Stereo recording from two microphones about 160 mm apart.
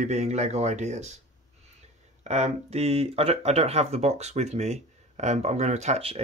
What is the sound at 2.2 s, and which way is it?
Speech, 45° right (ahead or behind).